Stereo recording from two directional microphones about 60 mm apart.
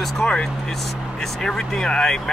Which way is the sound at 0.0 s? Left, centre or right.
Centre.